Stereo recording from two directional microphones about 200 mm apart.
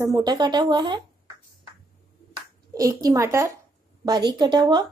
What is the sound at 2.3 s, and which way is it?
A woman's voice, 15° right (ahead or behind).